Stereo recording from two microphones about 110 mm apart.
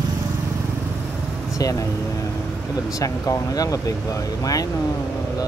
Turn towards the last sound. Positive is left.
turn(degrees=30)  # may be behind; listen again after turning